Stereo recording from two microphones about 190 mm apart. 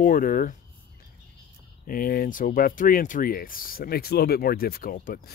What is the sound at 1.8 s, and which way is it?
Speech, 50° left (ahead or behind).